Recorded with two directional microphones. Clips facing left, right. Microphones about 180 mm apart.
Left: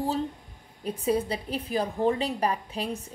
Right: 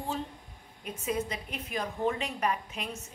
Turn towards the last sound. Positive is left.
turn(degrees=35)  # may be behind; listen again after turning